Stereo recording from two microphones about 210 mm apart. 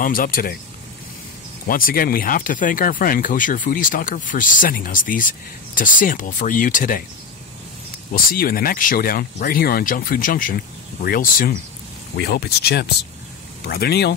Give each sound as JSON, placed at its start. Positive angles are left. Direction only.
{"t": 0.0, "sound": "speech", "side_deg": 40}
{"t": 1.7, "sound": "speech", "side_deg": 45}
{"t": 8.1, "sound": "speech", "side_deg": 45}